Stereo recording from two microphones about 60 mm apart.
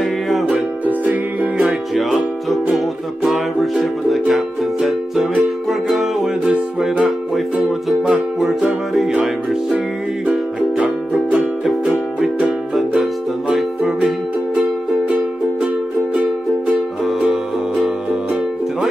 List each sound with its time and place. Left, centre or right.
0.0 s music: centre
0.8 s music: right
1.7 s music: centre
12.7 s music: centre
16.1 s music: right